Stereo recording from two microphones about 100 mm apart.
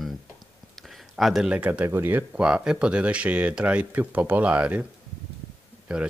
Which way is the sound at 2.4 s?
10° right (ahead or behind).